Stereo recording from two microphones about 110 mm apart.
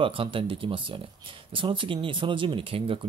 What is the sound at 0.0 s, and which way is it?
Speech, 55° right (ahead or behind).